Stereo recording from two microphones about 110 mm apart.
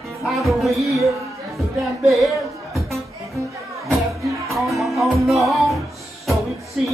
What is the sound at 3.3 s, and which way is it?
Music, 30° right (ahead or behind).